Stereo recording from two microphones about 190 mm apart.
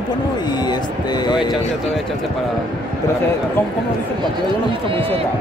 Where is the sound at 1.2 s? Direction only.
20° left (ahead or behind).